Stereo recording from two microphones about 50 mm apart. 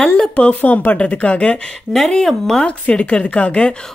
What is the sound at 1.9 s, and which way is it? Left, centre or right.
Speech, centre.